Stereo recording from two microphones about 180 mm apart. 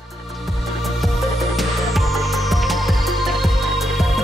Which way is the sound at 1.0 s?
Centre (ahead or behind).